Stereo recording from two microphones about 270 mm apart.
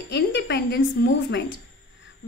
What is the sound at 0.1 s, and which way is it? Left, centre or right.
A woman's voice, left.